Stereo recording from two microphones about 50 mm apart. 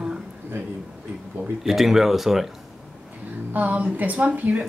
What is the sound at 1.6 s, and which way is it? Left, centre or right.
Speech, centre.